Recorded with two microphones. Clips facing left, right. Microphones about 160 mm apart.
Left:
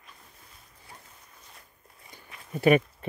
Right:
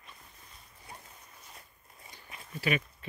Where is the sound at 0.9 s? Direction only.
20° right (ahead or behind).